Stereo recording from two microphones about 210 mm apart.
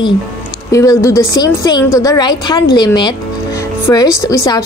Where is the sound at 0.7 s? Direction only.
15° left (ahead or behind).